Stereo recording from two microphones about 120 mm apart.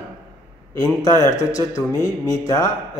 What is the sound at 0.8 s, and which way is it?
A man's voice, 30° left (ahead or behind).